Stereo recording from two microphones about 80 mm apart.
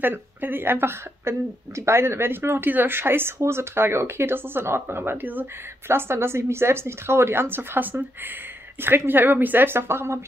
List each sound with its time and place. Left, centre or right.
0.0 s speech: right